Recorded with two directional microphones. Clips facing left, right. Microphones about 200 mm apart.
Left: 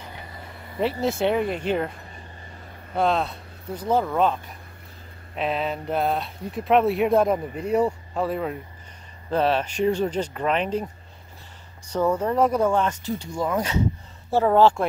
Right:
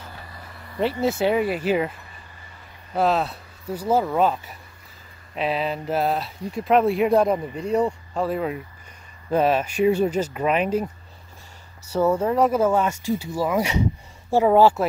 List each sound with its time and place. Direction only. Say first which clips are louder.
0.0 s vehicle: left 1 dB; 20° left (ahead or behind)
1.0 s speech: right 2 dB; centre (ahead or behind)
11.9 s speech: right 2 dB; 10° right (ahead or behind)